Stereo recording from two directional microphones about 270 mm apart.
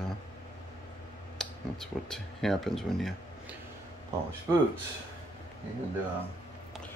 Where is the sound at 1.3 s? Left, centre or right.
Centre.